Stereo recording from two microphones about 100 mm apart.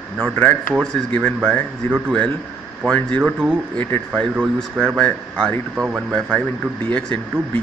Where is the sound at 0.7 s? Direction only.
5° left (ahead or behind).